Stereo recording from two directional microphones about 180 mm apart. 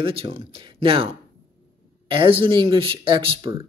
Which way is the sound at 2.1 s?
30° right (ahead or behind).